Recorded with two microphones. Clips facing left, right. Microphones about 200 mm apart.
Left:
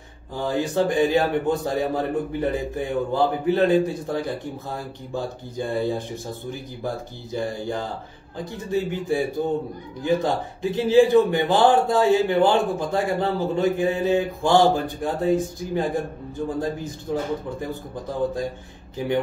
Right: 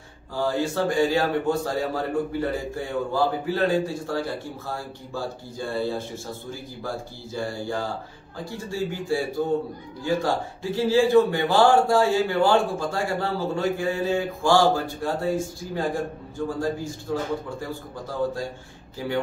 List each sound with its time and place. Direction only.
0.3 s speech: 15° left (ahead or behind)
7.3 s speech: 20° left (ahead or behind)